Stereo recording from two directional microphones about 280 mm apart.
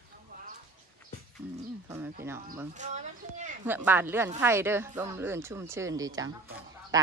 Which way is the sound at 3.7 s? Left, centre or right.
Centre.